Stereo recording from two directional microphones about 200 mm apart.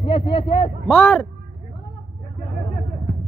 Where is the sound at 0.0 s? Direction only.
25° left (ahead or behind).